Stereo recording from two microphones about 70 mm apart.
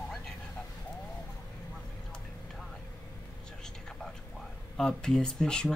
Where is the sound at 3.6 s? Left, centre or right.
Centre.